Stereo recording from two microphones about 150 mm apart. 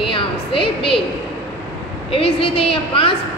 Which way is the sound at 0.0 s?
35° left (ahead or behind).